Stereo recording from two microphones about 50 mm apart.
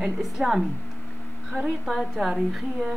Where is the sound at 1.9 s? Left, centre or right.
Centre.